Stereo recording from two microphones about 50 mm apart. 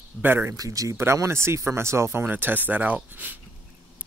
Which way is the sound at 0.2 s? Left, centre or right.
Right.